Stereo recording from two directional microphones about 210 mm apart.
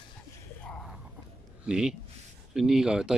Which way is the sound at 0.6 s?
Centre (ahead or behind).